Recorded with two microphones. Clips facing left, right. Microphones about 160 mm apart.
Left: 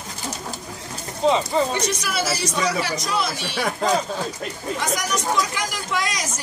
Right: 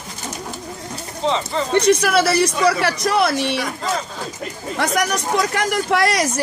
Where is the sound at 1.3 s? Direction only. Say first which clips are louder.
Left 2 dB; 10° left (ahead or behind).